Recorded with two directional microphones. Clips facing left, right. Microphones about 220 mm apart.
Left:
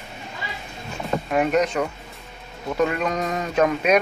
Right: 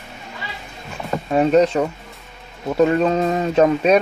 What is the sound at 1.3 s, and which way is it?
Speech, 30° right (ahead or behind).